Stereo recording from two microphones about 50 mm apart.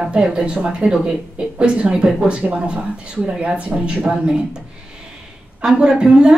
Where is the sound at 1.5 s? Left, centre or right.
Right.